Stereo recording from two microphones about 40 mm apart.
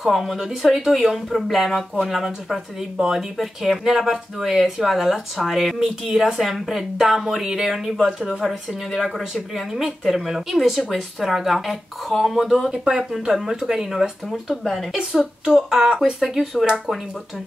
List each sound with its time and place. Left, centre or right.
0.0 s speech: centre
16.2 s speech: centre